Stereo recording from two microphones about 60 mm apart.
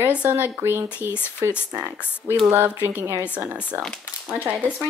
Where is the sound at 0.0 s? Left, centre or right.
Right.